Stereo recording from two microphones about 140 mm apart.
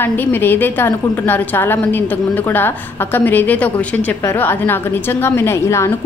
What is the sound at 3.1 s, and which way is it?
A woman's voice, 15° left (ahead or behind).